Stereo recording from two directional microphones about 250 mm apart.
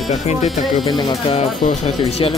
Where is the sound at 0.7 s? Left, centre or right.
Centre.